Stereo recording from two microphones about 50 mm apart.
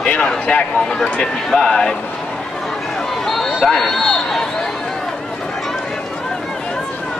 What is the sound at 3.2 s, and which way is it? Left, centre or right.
Chatter, centre.